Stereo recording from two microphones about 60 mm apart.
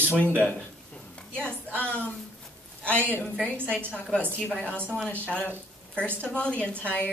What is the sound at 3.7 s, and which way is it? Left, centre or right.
A woman's voice, centre.